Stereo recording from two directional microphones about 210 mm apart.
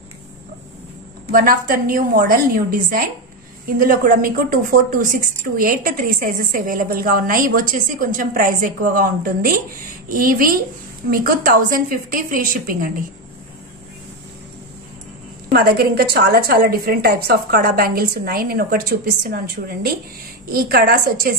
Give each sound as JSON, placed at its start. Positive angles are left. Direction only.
{"t": 1.3, "sound": "a woman's voice", "side_deg": -40}
{"t": 15.5, "sound": "a woman's voice", "side_deg": -45}